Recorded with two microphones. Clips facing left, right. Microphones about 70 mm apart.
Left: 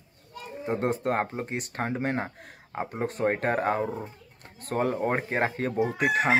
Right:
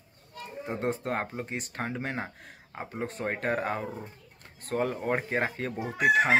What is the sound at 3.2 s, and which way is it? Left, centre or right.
Speech, left.